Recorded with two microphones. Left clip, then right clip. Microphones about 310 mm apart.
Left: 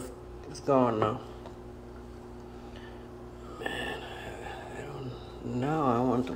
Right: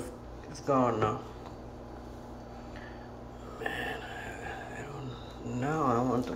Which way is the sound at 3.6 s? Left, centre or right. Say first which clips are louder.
Even; centre.